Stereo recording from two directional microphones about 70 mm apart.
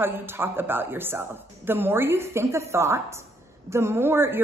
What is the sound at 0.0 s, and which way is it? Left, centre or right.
Speech, right.